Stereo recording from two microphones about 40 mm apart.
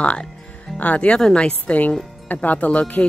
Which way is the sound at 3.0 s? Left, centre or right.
Left.